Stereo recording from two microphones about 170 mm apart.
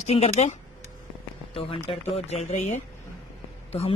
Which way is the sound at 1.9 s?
35° left (ahead or behind).